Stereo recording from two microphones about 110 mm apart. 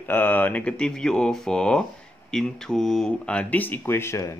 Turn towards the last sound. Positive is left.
turn(degrees=25)  # may be behind; listen again after turning